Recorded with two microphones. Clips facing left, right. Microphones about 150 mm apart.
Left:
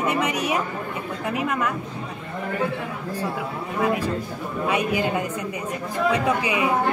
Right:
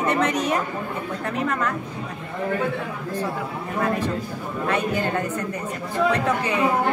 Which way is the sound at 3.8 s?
10° left (ahead or behind).